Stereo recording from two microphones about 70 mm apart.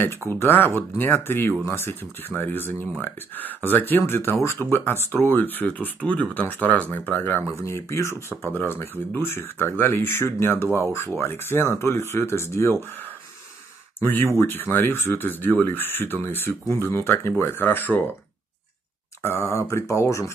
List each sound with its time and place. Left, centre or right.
0.3 s speech: left
7.6 s speech: left
13.9 s speech: left
19.2 s speech: left